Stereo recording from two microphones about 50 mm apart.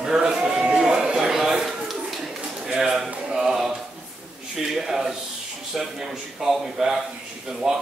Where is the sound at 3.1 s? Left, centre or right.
Right.